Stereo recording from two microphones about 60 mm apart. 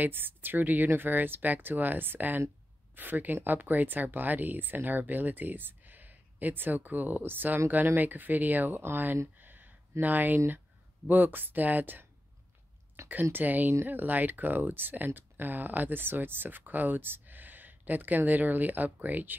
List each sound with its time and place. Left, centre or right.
0.0 s speech: right
9.4 s a sound: right
11.1 s speech: right
13.1 s speech: right